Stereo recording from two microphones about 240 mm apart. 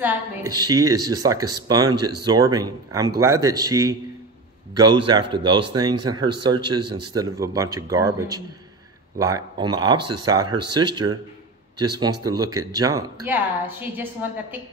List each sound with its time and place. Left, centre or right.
0.0 s speech: centre